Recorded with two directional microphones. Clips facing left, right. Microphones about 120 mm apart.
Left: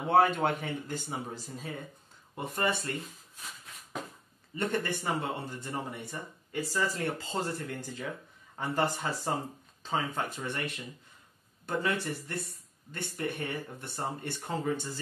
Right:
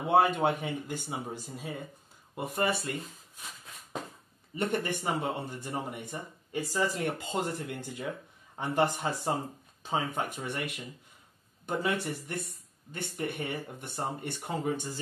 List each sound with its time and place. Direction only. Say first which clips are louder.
0.1 s speech: even; 15° right (ahead or behind)
4.6 s speech: right 1 dB; 15° right (ahead or behind)